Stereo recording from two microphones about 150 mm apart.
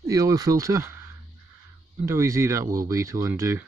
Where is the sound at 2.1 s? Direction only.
20° right (ahead or behind).